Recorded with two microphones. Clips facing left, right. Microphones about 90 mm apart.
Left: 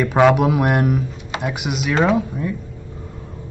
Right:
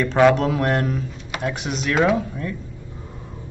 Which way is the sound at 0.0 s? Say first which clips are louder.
Left 2 dB; 15° left (ahead or behind).